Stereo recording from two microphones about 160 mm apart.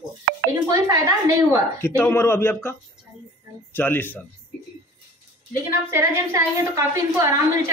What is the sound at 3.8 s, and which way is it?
Speech, 10° left (ahead or behind).